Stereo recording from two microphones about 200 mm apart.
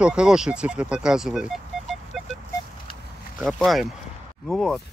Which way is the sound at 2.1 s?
Centre (ahead or behind).